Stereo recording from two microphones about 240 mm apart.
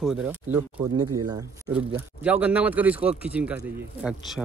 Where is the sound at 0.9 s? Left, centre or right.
Right.